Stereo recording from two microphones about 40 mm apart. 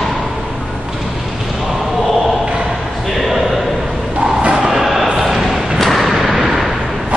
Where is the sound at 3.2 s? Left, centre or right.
Centre.